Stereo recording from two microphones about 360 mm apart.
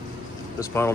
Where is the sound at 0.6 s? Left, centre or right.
Centre.